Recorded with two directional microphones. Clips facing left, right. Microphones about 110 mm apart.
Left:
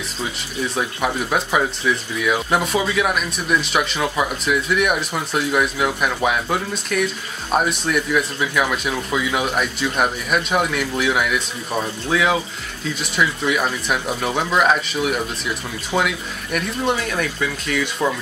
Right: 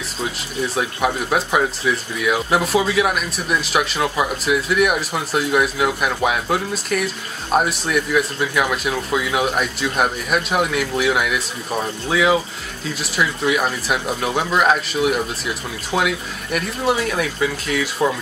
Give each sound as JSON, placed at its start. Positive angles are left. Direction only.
{"t": 0.7, "sound": "speech", "side_deg": 0}